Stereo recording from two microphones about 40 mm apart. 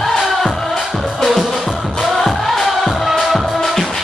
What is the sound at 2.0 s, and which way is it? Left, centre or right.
Music, centre.